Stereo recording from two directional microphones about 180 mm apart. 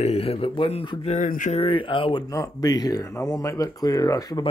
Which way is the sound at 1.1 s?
45° left (ahead or behind).